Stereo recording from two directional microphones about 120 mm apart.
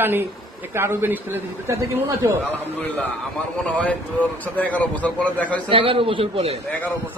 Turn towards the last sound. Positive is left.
turn(degrees=15)  # may be behind; listen again after turning